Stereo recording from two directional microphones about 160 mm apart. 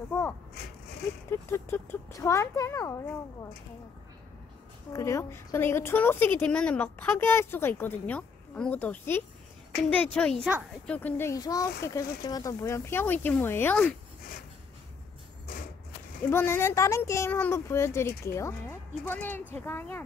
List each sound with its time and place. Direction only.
1.5 s a woman's voice: 15° left (ahead or behind)
4.9 s a woman's voice: 20° left (ahead or behind)
16.3 s a woman's voice: 15° left (ahead or behind)